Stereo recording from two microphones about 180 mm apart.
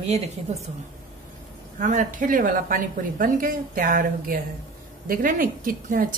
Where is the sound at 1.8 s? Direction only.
45° right (ahead or behind).